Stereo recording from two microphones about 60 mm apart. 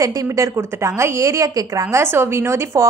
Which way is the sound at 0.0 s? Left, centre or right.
Right.